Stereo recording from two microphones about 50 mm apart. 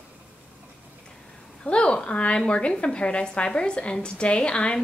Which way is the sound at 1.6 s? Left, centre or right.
Centre.